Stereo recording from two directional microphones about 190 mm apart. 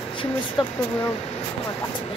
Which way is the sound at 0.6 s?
25° left (ahead or behind).